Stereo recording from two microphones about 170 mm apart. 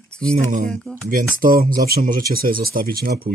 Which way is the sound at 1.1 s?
55° right (ahead or behind).